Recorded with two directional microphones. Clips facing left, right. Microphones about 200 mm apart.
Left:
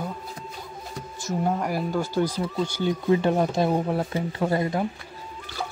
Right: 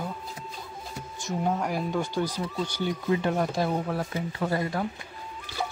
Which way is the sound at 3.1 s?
30° left (ahead or behind).